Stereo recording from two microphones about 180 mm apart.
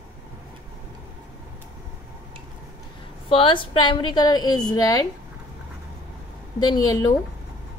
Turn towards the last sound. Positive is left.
turn(degrees=20)  # may be behind; listen again after turning